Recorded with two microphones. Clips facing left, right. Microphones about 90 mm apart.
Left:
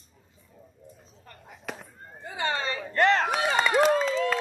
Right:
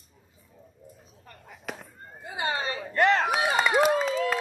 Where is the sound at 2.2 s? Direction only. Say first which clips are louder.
Left 1 dB; 40° left (ahead or behind).